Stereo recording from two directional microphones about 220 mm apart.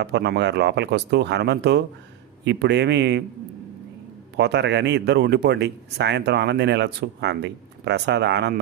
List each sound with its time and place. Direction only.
0.0 s speech: 50° right (ahead or behind)
4.4 s speech: 50° right (ahead or behind)